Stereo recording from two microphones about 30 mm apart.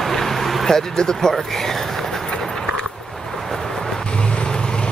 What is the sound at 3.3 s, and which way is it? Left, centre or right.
Vehicle, centre.